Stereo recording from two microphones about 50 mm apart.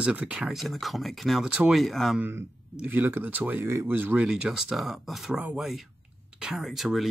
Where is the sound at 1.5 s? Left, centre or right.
Centre.